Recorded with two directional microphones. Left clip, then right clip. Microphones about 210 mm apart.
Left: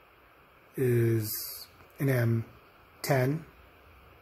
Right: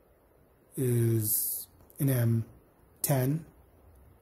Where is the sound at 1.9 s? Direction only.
40° right (ahead or behind).